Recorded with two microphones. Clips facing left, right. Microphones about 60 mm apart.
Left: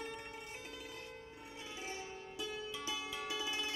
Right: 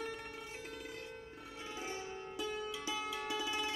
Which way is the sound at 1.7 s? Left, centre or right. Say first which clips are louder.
Right 3 dB; right.